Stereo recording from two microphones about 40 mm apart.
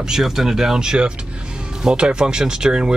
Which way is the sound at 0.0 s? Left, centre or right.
Centre.